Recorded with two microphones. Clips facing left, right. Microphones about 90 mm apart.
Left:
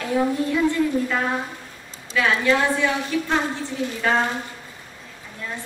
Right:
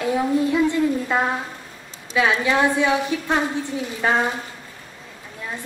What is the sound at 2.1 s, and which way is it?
A woman's voice, 15° right (ahead or behind).